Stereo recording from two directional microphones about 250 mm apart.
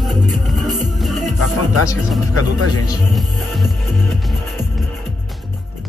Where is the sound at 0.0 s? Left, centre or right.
Centre.